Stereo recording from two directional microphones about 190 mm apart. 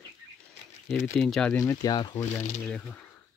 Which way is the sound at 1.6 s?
15° left (ahead or behind).